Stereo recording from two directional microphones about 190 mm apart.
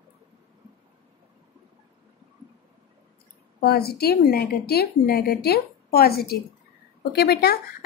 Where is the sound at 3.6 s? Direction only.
55° left (ahead or behind).